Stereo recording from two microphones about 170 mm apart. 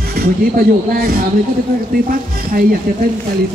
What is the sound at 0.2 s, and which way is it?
Speech, 60° right (ahead or behind).